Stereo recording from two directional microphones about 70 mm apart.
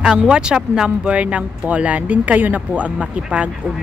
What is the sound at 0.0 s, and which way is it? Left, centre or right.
Speech, centre.